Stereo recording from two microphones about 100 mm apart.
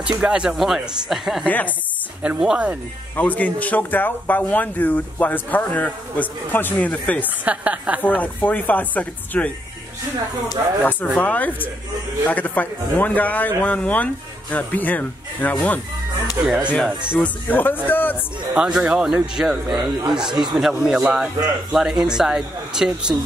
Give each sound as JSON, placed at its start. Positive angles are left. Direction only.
{"t": 0.2, "sound": "speech", "side_deg": -10}
{"t": 3.2, "sound": "speech", "side_deg": 15}
{"t": 7.2, "sound": "speech", "side_deg": -15}
{"t": 8.2, "sound": "speech", "side_deg": 15}
{"t": 10.8, "sound": "speech", "side_deg": 15}
{"t": 16.4, "sound": "speech", "side_deg": -5}
{"t": 17.2, "sound": "a man's voice", "side_deg": 15}
{"t": 18.5, "sound": "speech", "side_deg": -10}
{"t": 19.8, "sound": "speech", "side_deg": -50}
{"t": 20.5, "sound": "speech", "side_deg": -5}